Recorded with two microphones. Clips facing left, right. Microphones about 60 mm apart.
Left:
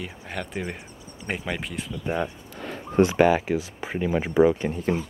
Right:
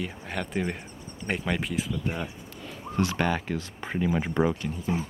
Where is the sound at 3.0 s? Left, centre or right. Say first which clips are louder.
Left 8 dB; centre.